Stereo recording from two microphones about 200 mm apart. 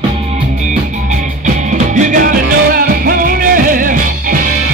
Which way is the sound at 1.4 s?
40° right (ahead or behind).